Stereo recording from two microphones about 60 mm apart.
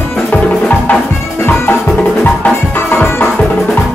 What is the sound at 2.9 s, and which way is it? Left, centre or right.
Music, left.